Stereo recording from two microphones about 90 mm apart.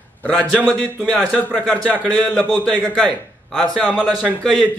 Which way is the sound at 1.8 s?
15° left (ahead or behind).